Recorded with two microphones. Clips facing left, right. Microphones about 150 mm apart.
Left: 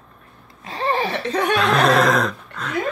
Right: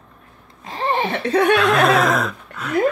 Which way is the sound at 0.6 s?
20° right (ahead or behind).